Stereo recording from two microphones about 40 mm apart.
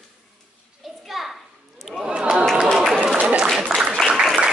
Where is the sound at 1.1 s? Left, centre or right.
Centre.